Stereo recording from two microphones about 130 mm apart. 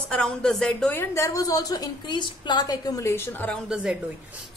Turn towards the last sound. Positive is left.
turn(degrees=-5)  # may be behind; listen again after turning